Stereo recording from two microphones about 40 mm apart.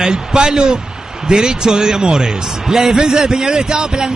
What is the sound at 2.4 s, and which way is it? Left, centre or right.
A man's voice, centre.